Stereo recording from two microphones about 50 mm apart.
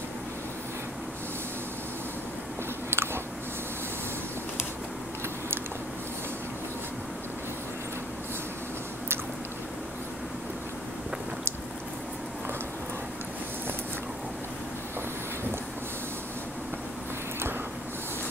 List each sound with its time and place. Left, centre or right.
2.9 s biting: right